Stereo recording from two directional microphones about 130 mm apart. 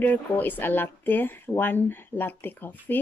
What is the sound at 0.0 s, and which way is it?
Speech, 15° left (ahead or behind).